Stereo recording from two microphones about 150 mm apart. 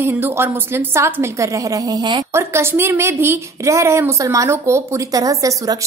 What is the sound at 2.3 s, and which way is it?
A woman's voice, 15° right (ahead or behind).